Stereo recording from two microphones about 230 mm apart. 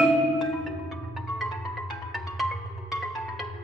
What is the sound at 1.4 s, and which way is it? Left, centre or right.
Music, centre.